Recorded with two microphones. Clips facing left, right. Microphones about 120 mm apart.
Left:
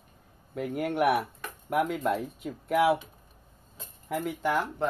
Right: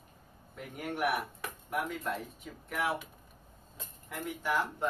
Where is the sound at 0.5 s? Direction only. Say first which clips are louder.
Left 9 dB; 75° left (ahead or behind).